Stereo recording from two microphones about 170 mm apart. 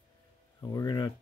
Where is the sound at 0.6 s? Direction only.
20° left (ahead or behind).